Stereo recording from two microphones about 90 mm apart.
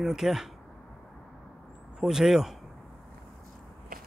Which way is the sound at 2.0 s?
5° right (ahead or behind).